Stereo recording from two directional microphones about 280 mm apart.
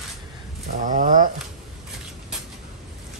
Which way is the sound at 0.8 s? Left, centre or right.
Right.